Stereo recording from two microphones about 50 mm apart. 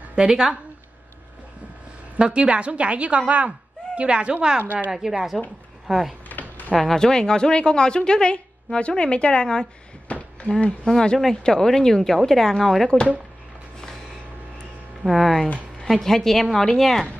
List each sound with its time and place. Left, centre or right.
0.1 s speech: centre
2.1 s speech: right
4.9 s a woman's voice: centre
7.0 s speech: centre
15.0 s a woman's voice: centre